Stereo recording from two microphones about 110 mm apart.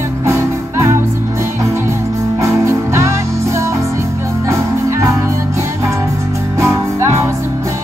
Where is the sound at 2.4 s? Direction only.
25° right (ahead or behind).